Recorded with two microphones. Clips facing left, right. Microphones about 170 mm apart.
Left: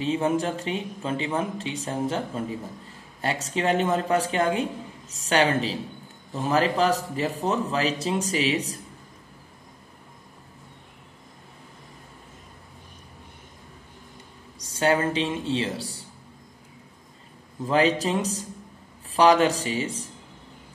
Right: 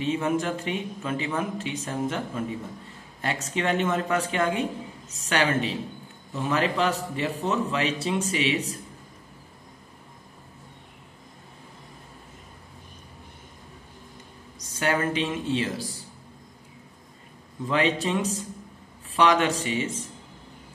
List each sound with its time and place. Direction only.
0.0 s speech: 30° left (ahead or behind)
14.6 s speech: 30° left (ahead or behind)
17.6 s speech: 40° left (ahead or behind)